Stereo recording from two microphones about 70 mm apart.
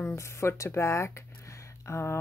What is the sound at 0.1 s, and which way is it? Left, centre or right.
Speech, left.